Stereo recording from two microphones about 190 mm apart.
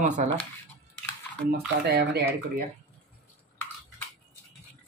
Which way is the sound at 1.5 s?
55° right (ahead or behind).